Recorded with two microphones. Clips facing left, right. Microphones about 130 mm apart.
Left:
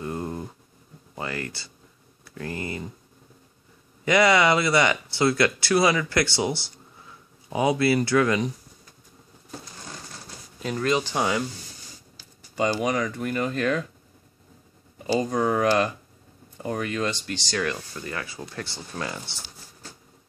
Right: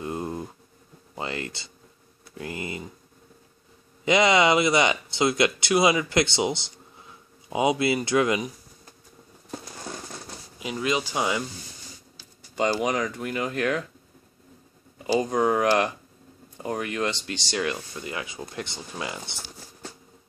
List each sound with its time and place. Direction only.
0.0 s bee: 20° right (ahead or behind)
1.1 s speech: 25° right (ahead or behind)
4.0 s speech: 20° right (ahead or behind)
10.6 s speech: 10° right (ahead or behind)
12.9 s speech: 20° right (ahead or behind)
13.2 s speech: 5° right (ahead or behind)
15.3 s speech: 20° right (ahead or behind)